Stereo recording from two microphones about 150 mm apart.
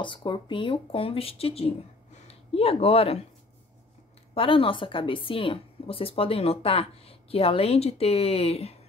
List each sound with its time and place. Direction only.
0.0 s a woman's voice: 35° left (ahead or behind)
4.3 s a woman's voice: 35° left (ahead or behind)